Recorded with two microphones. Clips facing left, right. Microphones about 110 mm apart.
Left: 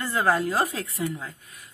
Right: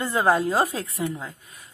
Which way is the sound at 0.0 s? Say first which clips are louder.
Right 2 dB; 20° right (ahead or behind).